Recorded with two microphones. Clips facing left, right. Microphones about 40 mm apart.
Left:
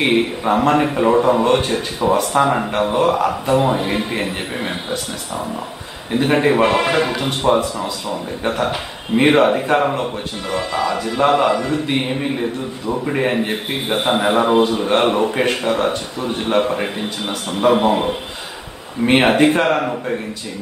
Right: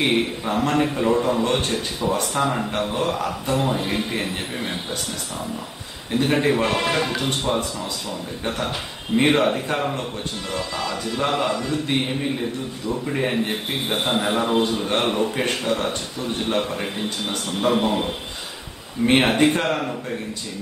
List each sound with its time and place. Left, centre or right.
0.0 s a man's voice: centre
1.4 s speech: centre
2.3 s a man's voice: left
3.0 s a man's voice: centre
6.1 s speech: centre
9.1 s a man's voice: centre
17.3 s speech: centre
19.0 s a man's voice: centre